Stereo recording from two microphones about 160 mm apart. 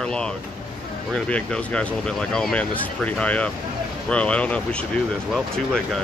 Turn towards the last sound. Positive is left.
turn(degrees=5)  # may be behind; listen again after turning